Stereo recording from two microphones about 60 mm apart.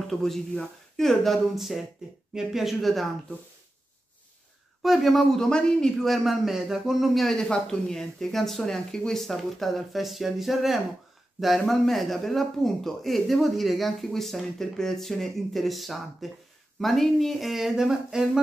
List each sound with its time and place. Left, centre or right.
0.1 s speech: centre
4.8 s speech: centre
6.0 s speech: centre